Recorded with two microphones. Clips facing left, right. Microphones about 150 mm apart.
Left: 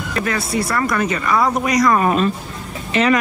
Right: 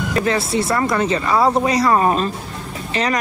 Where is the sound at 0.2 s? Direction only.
25° right (ahead or behind).